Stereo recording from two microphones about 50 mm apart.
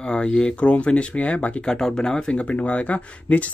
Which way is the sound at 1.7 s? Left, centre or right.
Centre.